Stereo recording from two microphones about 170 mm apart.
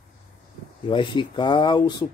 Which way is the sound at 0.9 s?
30° left (ahead or behind).